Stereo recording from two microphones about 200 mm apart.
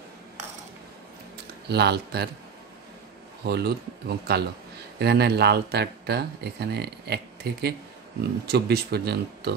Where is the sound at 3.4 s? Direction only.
55° right (ahead or behind).